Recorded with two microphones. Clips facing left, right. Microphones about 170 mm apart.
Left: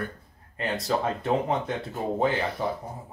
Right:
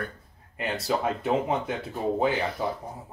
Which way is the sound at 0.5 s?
10° right (ahead or behind).